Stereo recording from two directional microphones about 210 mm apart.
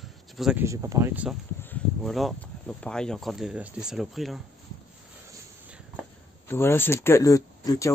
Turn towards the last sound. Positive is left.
turn(degrees=15)  # may be behind; listen again after turning